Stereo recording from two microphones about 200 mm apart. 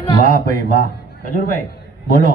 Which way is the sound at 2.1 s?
45° left (ahead or behind).